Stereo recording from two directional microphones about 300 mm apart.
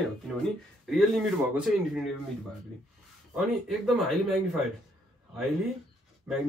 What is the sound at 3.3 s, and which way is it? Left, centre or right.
Speech, centre.